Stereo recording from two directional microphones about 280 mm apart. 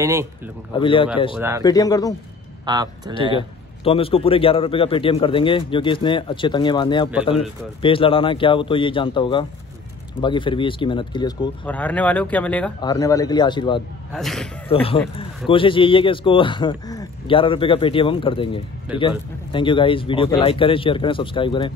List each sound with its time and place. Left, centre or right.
0.0 s speech: centre
0.7 s speech: centre
1.3 s speech: centre
1.6 s speech: centre
2.6 s speech: centre
3.3 s speech: centre
11.6 s speech: centre
14.1 s speech: centre
14.7 s speech: centre